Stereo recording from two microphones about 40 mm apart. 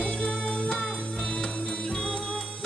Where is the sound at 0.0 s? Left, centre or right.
Centre.